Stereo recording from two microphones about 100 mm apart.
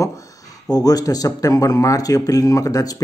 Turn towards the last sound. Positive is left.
turn(degrees=35)  # may be behind; listen again after turning